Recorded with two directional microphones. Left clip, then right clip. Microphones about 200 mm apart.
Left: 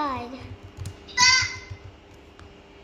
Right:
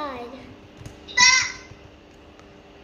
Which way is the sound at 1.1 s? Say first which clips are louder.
Right 2 dB; 20° right (ahead or behind).